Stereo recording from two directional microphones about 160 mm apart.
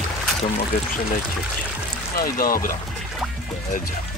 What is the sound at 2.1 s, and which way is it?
Speech, 65° left (ahead or behind).